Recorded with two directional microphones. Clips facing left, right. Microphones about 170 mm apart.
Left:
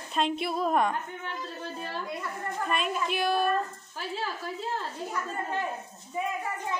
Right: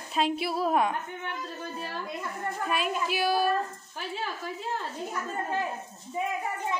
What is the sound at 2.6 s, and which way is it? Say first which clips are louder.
A woman's voice: even; 5° right (ahead or behind).